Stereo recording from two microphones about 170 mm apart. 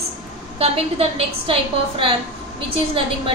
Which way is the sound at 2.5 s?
30° right (ahead or behind).